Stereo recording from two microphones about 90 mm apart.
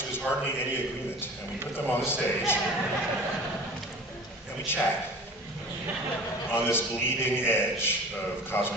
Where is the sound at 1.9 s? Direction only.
25° left (ahead or behind).